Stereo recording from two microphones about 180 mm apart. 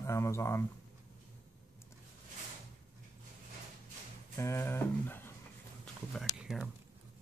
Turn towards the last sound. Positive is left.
turn(degrees=-5)  # may be behind; listen again after turning